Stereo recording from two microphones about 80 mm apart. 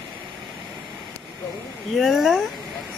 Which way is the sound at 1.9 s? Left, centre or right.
Centre.